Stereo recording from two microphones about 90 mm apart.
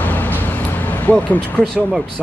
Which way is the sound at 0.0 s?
20° left (ahead or behind).